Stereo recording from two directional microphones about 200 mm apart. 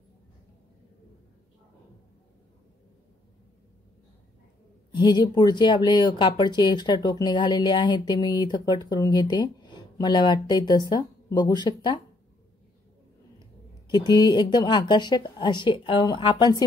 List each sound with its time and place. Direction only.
4.9 s speech: 20° left (ahead or behind)
13.8 s speech: 20° left (ahead or behind)